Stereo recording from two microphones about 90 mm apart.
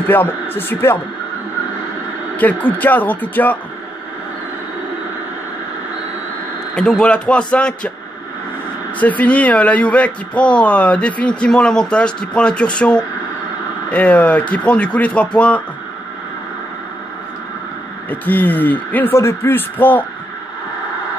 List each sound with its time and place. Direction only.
0.1 s speech: 20° left (ahead or behind)
2.3 s speech: 20° left (ahead or behind)
6.7 s speech: 10° left (ahead or behind)
9.0 s speech: 15° left (ahead or behind)
18.1 s speech: 20° left (ahead or behind)